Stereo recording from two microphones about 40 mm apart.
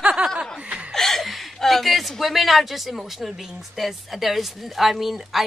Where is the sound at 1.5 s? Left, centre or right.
Centre.